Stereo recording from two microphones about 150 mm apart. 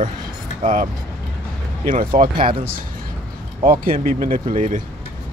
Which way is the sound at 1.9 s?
60° right (ahead or behind).